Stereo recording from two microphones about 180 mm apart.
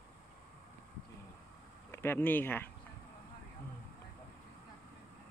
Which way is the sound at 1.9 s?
10° left (ahead or behind).